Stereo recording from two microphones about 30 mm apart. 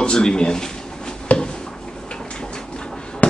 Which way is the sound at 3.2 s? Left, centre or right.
Left.